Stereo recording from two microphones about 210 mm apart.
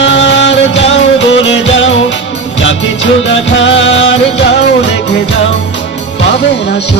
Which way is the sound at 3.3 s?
65° left (ahead or behind).